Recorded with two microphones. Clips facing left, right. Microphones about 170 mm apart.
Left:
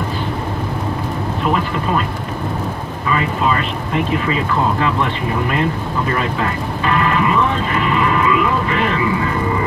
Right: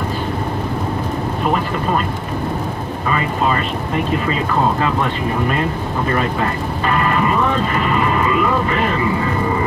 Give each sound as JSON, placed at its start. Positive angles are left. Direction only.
{"t": 7.1, "sound": "speech", "side_deg": -45}